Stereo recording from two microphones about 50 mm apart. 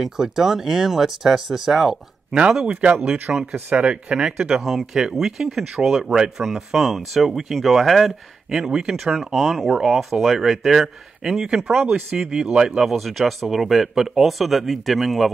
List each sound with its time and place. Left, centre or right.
0.0 s speech: centre
2.6 s speech: right
4.6 s speech: centre
6.4 s speech: centre
12.3 s speech: centre